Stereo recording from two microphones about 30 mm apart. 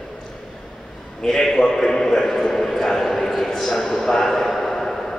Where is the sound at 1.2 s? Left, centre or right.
Centre.